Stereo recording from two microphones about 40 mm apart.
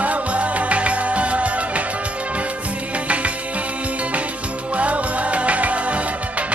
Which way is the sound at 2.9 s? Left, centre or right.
Right.